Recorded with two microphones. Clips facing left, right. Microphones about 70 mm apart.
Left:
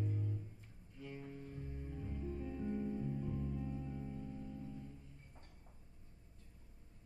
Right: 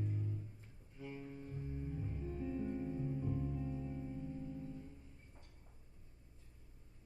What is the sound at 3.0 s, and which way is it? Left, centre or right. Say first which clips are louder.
Music: right 1 dB; centre.